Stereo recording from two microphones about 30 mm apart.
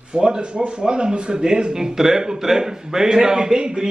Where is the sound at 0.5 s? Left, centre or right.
Right.